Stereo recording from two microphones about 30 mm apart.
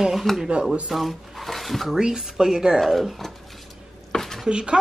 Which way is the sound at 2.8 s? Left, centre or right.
Centre.